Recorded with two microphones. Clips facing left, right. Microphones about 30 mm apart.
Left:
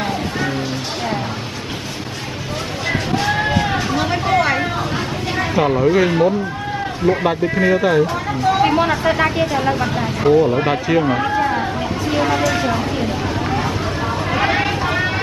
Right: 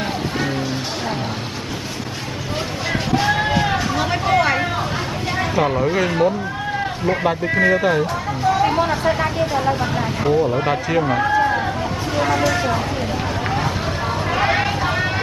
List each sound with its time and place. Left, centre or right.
3.2 s a sound: centre
5.4 s speech: centre
7.6 s speech: centre
8.5 s speech: left
9.6 s speech: centre
12.2 s a sound: centre
14.3 s vehicle: centre